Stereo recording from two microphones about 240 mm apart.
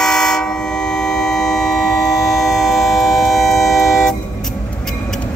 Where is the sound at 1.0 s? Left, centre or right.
Centre.